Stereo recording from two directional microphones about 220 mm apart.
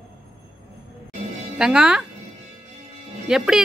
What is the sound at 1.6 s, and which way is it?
Speech, 5° right (ahead or behind).